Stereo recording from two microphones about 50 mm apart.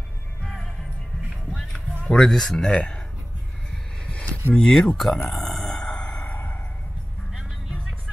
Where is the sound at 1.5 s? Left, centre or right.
Centre.